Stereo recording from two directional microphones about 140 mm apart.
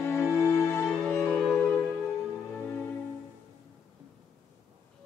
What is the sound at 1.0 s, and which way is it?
Music, 15° left (ahead or behind).